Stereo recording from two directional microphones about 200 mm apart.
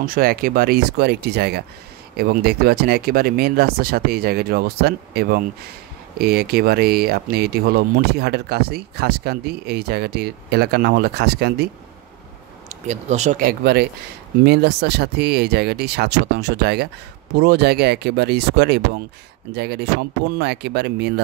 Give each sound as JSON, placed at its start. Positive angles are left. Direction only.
{"t": 0.0, "sound": "speech", "side_deg": -45}
{"t": 12.6, "sound": "speech", "side_deg": -35}